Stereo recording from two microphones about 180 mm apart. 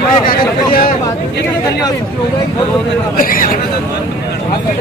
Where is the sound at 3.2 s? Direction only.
50° left (ahead or behind).